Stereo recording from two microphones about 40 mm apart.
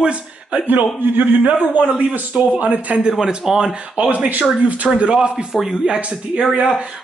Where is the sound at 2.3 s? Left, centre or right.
Right.